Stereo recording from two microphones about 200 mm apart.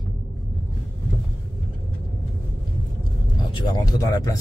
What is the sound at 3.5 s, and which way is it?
Speech, 20° left (ahead or behind).